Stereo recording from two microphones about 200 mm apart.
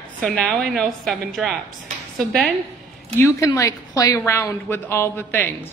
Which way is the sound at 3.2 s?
15° left (ahead or behind).